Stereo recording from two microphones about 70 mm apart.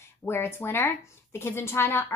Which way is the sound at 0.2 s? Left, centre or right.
Left.